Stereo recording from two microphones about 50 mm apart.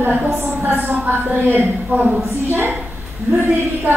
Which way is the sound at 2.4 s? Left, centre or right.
Right.